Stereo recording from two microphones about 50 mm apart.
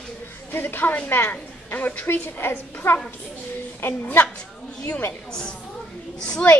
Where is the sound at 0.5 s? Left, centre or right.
Left.